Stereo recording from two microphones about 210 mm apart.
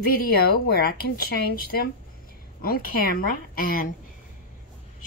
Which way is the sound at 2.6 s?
45° left (ahead or behind).